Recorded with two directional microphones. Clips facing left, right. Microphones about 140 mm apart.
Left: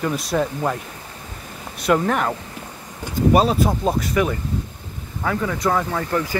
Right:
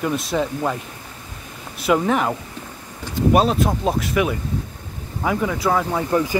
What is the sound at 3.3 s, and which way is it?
Speech, centre (ahead or behind).